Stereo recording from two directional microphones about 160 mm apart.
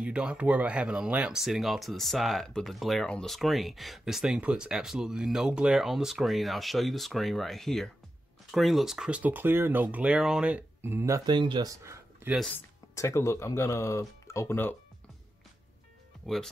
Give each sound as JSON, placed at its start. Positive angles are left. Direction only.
{"t": 0.0, "sound": "speech", "side_deg": -5}
{"t": 11.8, "sound": "a sound", "side_deg": -15}
{"t": 12.4, "sound": "speech", "side_deg": 5}
{"t": 12.9, "sound": "speech", "side_deg": 20}